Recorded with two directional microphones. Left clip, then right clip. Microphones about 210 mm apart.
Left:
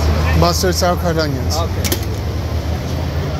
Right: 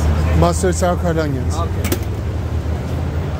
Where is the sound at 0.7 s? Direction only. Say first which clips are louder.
Left 2 dB; 20° right (ahead or behind).